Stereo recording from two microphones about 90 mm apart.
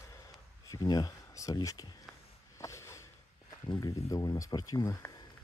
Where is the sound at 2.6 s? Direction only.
35° left (ahead or behind).